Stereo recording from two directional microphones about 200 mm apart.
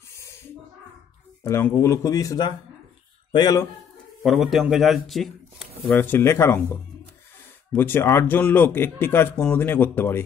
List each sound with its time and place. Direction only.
0.1 s a sound: 15° left (ahead or behind)
1.4 s speech: 15° left (ahead or behind)
4.2 s a man's voice: centre (ahead or behind)